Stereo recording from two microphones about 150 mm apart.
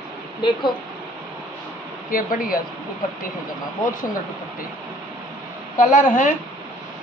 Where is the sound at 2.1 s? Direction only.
70° left (ahead or behind).